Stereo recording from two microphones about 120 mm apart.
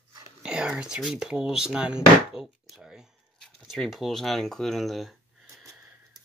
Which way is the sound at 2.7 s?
5° right (ahead or behind).